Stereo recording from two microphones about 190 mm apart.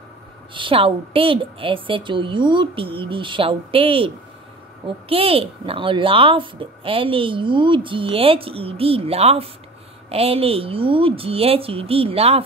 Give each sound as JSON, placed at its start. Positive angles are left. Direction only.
{"t": 0.6, "sound": "a woman's voice", "side_deg": -30}